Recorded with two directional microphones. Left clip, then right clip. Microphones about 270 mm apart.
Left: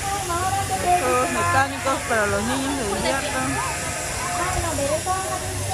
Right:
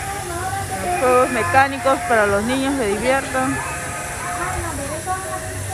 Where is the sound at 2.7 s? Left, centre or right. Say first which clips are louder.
Right 5 dB; centre.